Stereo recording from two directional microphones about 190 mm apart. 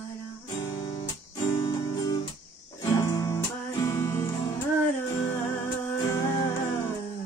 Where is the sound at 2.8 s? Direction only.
15° left (ahead or behind).